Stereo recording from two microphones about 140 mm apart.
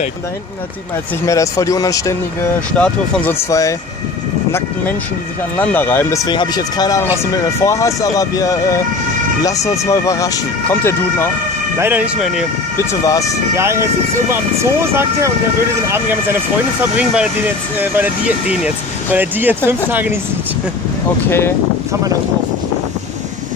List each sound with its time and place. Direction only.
1.2 s speech: 25° left (ahead or behind)
2.7 s speech: 10° left (ahead or behind)
6.2 s speech: 30° left (ahead or behind)
12.2 s speech: 5° right (ahead or behind)
12.7 s speech: 25° left (ahead or behind)
13.6 s speech: 20° right (ahead or behind)
21.3 s speech: 15° left (ahead or behind)